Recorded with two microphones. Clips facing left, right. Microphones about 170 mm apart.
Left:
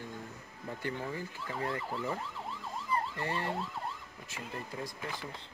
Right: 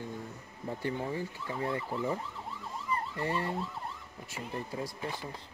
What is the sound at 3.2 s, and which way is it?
Ambulance, 35° right (ahead or behind).